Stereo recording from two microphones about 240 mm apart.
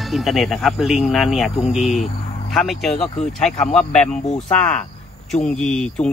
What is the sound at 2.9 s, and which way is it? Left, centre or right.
Speech, left.